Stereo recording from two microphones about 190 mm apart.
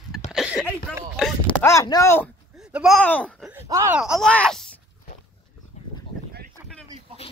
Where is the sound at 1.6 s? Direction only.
15° left (ahead or behind).